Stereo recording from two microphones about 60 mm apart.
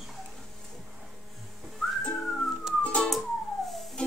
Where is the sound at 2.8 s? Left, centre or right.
Centre.